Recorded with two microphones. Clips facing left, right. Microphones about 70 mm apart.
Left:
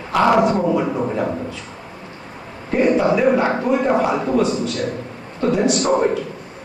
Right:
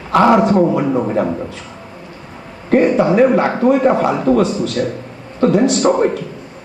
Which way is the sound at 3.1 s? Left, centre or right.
Right.